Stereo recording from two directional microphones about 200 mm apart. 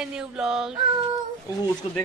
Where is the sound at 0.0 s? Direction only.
5° right (ahead or behind).